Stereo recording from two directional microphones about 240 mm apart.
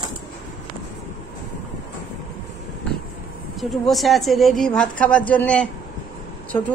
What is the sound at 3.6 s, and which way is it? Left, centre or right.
A woman's voice, centre.